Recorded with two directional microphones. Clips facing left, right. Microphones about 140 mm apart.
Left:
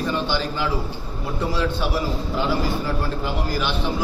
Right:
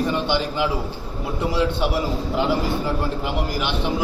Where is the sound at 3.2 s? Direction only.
20° right (ahead or behind).